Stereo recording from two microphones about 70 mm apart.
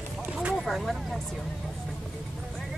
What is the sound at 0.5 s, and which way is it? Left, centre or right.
Speech, centre.